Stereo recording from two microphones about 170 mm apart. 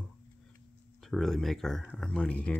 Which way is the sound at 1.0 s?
Centre (ahead or behind).